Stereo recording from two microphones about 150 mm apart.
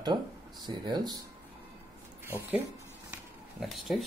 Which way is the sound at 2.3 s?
10° right (ahead or behind).